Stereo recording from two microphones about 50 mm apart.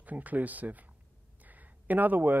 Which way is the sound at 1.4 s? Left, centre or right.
Right.